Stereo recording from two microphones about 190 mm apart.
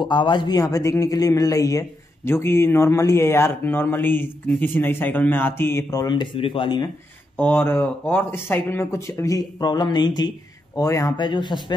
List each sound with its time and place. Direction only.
0.0 s a man's voice: 25° left (ahead or behind)
7.3 s a man's voice: 10° left (ahead or behind)